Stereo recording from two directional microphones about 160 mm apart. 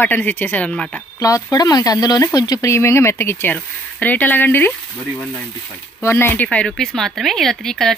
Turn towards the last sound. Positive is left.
turn(degrees=0)  # may be behind; listen again after turning